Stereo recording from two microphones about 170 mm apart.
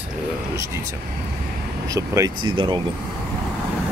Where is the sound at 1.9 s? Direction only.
20° right (ahead or behind).